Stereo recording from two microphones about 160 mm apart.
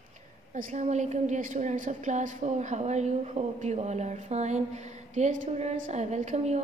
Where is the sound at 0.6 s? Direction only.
50° right (ahead or behind).